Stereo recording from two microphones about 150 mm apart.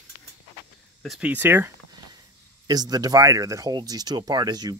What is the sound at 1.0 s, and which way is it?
Speech, 5° right (ahead or behind).